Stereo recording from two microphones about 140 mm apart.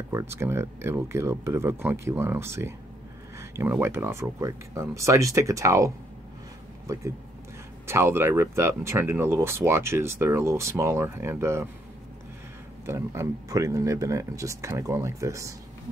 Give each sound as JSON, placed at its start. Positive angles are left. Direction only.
{"t": 0.1, "sound": "speech", "side_deg": -20}
{"t": 7.8, "sound": "speech", "side_deg": -20}
{"t": 12.8, "sound": "speech", "side_deg": -20}